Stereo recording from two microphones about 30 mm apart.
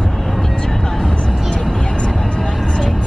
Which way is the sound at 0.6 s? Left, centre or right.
Centre.